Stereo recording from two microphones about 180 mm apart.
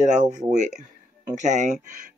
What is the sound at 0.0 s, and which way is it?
Speech, 40° right (ahead or behind).